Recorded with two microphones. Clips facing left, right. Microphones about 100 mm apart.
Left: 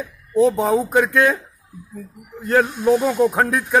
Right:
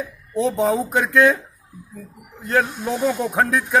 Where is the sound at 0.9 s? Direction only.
15° left (ahead or behind).